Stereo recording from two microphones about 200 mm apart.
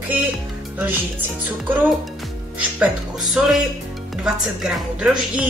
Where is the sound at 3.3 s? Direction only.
Centre (ahead or behind).